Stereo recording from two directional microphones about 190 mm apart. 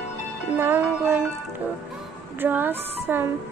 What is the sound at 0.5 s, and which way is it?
Speech, 10° right (ahead or behind).